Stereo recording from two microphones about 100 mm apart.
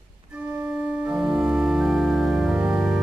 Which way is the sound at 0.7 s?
10° right (ahead or behind).